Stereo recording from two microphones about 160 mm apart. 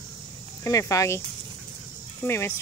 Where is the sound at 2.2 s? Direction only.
15° left (ahead or behind).